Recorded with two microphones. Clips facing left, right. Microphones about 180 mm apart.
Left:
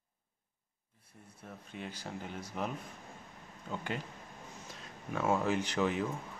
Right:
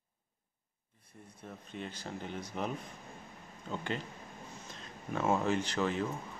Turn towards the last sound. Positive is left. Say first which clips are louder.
# left 1 dB
turn(degrees=15)  # may be behind; listen again after turning